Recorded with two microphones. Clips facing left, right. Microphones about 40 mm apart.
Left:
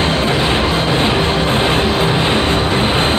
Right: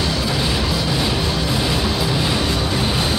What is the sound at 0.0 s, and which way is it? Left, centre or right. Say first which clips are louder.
Vehicle: left 6 dB; left.